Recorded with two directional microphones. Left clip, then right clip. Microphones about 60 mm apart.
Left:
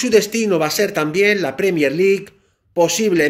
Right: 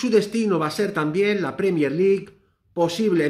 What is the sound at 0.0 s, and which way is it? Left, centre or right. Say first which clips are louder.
Speech: left 5 dB; right.